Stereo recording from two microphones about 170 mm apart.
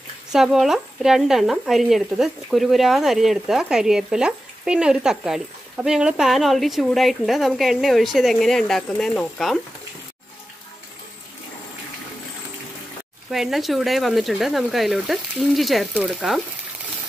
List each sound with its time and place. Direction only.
0.3 s speech: centre (ahead or behind)
13.3 s speech: centre (ahead or behind)